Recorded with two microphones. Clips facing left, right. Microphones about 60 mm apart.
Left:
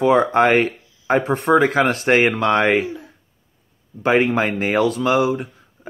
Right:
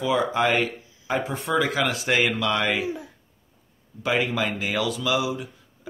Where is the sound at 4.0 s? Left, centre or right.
Left.